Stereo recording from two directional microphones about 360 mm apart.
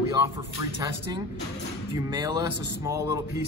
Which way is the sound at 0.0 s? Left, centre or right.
Centre.